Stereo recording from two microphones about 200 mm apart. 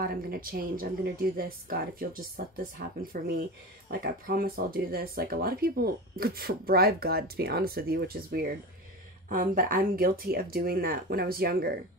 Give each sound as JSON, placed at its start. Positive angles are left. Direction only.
{"t": 0.0, "sound": "speech", "side_deg": -50}